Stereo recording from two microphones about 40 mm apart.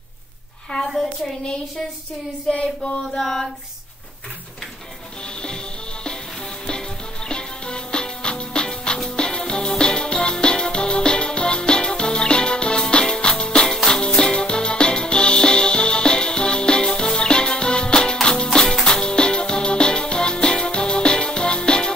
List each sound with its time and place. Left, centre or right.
2.5 s a sound: left
3.2 s female singing: centre
7.2 s music: left